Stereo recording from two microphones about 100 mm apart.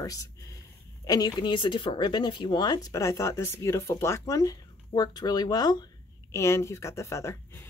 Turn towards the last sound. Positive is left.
turn(degrees=30)  # may be behind; listen again after turning